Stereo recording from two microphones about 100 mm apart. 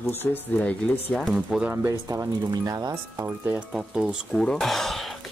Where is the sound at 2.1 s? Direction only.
40° right (ahead or behind).